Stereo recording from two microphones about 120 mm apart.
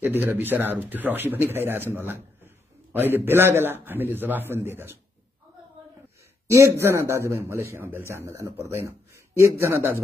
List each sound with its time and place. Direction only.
0.0 s a man's voice: 15° right (ahead or behind)
6.4 s a man's voice: 25° right (ahead or behind)